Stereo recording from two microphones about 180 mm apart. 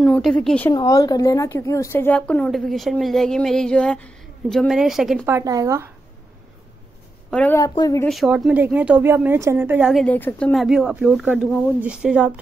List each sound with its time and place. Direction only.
0.0 s a woman's voice: centre (ahead or behind)
0.7 s a woman's voice: 20° left (ahead or behind); by 5.2 s centre (ahead or behind)
5.2 s speech: 15° right (ahead or behind)
7.2 s a woman's voice: 5° left (ahead or behind)
7.5 s speech: 20° left (ahead or behind)
8.1 s speech: centre (ahead or behind)
10.0 s a woman's voice: 10° left (ahead or behind)